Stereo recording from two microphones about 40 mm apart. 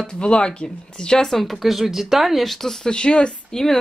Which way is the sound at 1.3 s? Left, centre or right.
Centre.